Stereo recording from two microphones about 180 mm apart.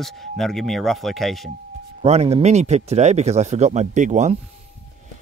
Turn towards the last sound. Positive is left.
turn(degrees=-40)  # may be behind; listen again after turning